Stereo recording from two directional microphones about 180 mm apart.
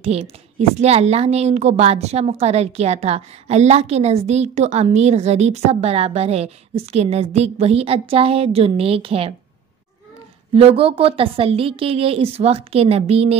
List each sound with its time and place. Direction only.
0.0 s a woman's voice: 35° right (ahead or behind)
10.5 s a woman's voice: 30° right (ahead or behind)